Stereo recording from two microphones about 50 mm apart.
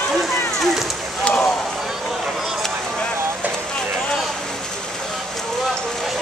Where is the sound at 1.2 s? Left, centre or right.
Centre.